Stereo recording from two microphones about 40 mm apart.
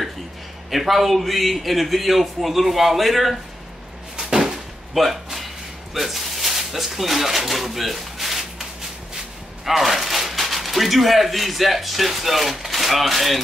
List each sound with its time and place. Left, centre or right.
0.7 s a man's voice: centre
4.2 s a sound: centre
5.9 s speech: centre
9.7 s speech: centre